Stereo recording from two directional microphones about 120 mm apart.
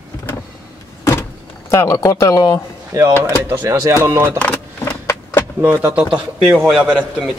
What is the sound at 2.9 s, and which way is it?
A man's voice, 25° right (ahead or behind).